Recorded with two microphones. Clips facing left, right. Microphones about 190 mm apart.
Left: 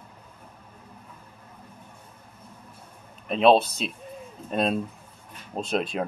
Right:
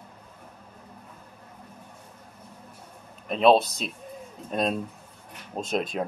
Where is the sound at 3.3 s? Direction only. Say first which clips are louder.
Left 1 dB; centre (ahead or behind).